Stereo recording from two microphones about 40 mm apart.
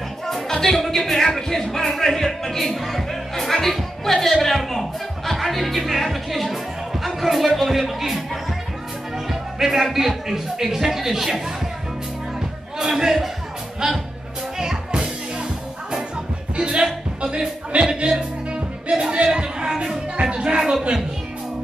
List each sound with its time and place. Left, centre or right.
0.3 s speech: centre
9.3 s speech: centre
13.0 s speech: centre
13.8 s speech: centre
14.6 s music: centre
16.5 s speech: right
18.5 s music: right
20.2 s speech: right